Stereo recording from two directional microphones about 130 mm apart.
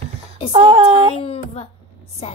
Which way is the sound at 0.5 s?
50° right (ahead or behind).